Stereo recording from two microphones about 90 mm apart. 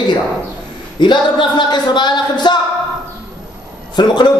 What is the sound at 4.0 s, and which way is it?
Speech, 50° left (ahead or behind).